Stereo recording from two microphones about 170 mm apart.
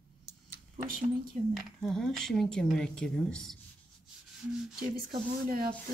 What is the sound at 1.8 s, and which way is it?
Speech, centre (ahead or behind).